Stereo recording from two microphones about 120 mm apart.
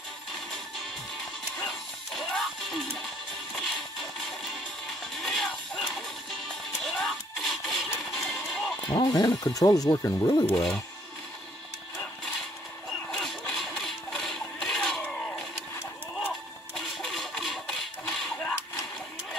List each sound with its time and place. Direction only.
2.1 s music: centre (ahead or behind)
4.2 s music: centre (ahead or behind)
8.3 s a sound: centre (ahead or behind)
8.8 s speech: 40° left (ahead or behind)
10.5 s speech: 5° left (ahead or behind)
13.1 s engine: 5° left (ahead or behind)
15.0 s crowd: 5° left (ahead or behind)
16.7 s a sound: 5° left (ahead or behind)